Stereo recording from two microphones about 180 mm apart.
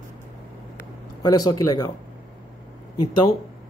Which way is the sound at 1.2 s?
20° left (ahead or behind).